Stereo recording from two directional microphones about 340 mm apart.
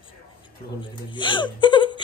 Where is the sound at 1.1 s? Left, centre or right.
Centre.